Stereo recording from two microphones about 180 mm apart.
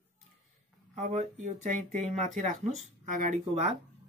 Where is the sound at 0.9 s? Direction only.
40° right (ahead or behind).